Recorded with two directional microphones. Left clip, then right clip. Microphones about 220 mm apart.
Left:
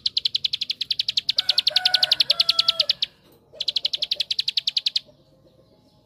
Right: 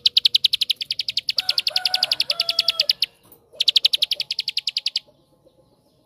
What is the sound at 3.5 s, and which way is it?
Bird, 45° right (ahead or behind).